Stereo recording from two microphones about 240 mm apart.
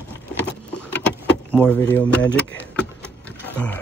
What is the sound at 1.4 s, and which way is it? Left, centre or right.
Speech, centre.